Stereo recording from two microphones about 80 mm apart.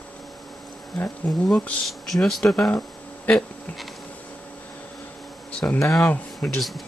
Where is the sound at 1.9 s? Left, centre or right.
Centre.